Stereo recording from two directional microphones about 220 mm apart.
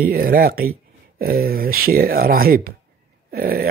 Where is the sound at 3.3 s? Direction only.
40° right (ahead or behind).